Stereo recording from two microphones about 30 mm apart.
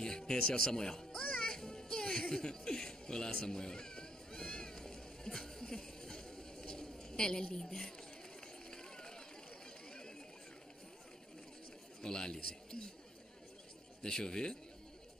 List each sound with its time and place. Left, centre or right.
0.0 s a sound: left
0.6 s a man's voice: left
1.5 s music: left
3.3 s a sound: left
8.6 s run: left
9.8 s chatter: left
12.0 s a man's voice: left
14.0 s a man's voice: left